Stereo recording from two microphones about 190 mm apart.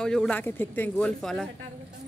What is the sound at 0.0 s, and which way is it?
Speech, 5° left (ahead or behind).